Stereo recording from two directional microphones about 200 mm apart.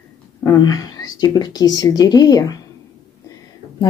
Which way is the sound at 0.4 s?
15° left (ahead or behind).